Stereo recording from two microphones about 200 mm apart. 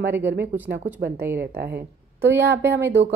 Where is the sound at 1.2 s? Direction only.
10° right (ahead or behind).